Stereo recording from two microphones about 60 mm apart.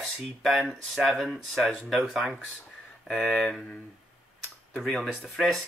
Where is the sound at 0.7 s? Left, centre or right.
Centre.